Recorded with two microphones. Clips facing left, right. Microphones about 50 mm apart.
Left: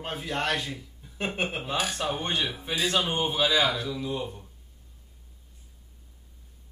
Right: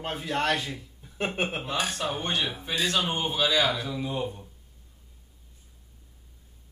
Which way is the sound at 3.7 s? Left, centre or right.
Centre.